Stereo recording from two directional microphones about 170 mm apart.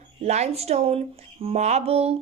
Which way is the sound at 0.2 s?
40° right (ahead or behind).